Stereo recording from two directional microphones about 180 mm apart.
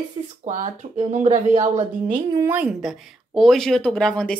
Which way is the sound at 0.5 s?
40° right (ahead or behind).